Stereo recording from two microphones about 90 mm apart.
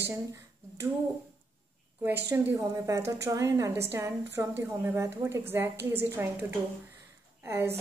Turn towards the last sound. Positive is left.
turn(degrees=-30)  # may be behind; listen again after turning